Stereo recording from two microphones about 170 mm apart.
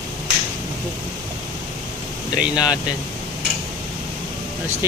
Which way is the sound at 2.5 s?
25° left (ahead or behind).